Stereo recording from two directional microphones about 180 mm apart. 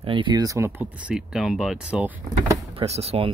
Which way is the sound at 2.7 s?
35° right (ahead or behind).